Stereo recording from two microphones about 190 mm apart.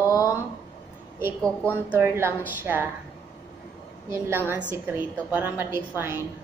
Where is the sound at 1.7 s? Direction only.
10° right (ahead or behind).